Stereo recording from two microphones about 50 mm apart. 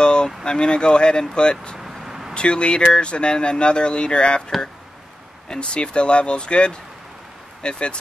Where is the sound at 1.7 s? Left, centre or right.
Centre.